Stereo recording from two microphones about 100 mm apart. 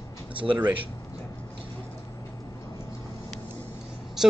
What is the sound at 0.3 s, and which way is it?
Speech, 60° right (ahead or behind).